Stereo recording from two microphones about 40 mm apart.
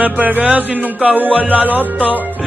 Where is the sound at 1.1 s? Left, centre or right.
Right.